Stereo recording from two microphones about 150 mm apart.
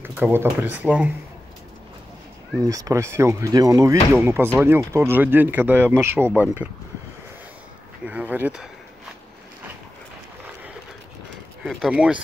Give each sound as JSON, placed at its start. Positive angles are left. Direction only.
{"t": 0.0, "sound": "speech", "side_deg": -15}
{"t": 2.6, "sound": "speech", "side_deg": -25}
{"t": 8.0, "sound": "speech", "side_deg": -10}
{"t": 11.6, "sound": "speech", "side_deg": 0}